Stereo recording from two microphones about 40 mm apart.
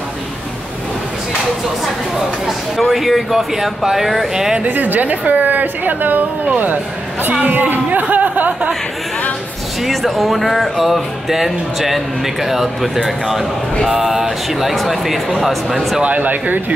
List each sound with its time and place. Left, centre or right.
2.8 s music: centre
4.6 s a woman's voice: right
9.8 s music: centre
13.8 s speech: centre
15.4 s music: centre
16.0 s a woman's voice: right